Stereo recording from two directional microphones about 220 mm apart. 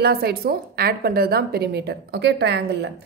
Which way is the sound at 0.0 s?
45° right (ahead or behind).